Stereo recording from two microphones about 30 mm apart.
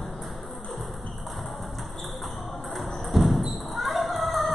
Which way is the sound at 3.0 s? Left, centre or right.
Centre.